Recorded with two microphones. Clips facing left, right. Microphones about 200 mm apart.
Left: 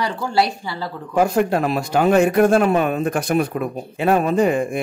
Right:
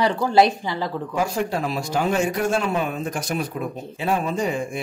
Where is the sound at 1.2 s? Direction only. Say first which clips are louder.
Left 7 dB; 55° left (ahead or behind).